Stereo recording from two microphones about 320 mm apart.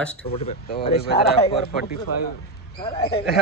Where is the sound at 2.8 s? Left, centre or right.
Centre.